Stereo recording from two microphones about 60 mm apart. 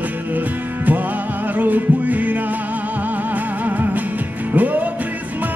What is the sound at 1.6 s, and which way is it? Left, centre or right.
Music, right.